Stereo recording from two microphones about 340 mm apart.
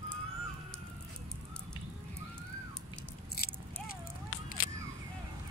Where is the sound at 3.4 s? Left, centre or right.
Left.